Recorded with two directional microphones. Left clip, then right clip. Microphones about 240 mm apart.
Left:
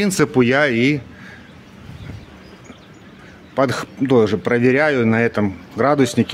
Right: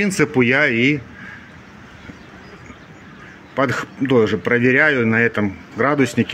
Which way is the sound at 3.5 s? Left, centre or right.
Centre.